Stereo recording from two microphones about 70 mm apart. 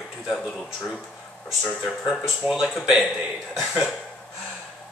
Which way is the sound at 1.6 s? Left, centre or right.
Centre.